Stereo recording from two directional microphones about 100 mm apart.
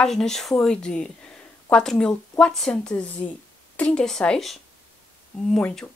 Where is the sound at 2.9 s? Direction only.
15° left (ahead or behind).